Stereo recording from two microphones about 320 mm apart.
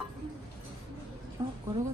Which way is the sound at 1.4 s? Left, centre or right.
Centre.